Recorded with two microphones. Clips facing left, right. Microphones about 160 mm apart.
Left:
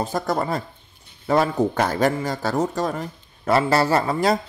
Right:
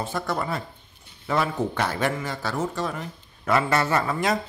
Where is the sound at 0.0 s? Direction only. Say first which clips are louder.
Left 4 dB; 40° left (ahead or behind).